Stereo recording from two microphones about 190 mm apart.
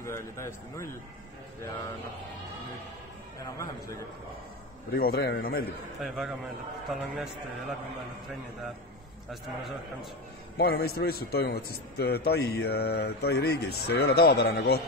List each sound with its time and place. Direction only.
0.0 s a man's voice: 15° left (ahead or behind)
4.9 s a man's voice: 55° left (ahead or behind)
5.9 s a man's voice: centre (ahead or behind)
9.3 s a man's voice: centre (ahead or behind)
10.6 s a man's voice: 55° left (ahead or behind)